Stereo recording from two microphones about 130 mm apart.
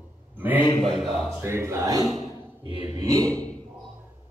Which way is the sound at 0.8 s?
Centre (ahead or behind).